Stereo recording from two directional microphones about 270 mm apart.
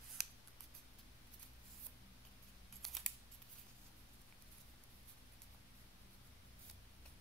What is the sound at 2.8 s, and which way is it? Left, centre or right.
Scissors, centre.